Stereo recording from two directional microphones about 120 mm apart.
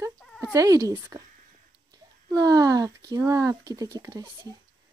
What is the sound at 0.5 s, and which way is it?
Speech, 30° right (ahead or behind).